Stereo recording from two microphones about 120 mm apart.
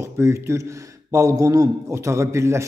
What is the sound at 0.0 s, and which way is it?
A man's voice, 25° right (ahead or behind).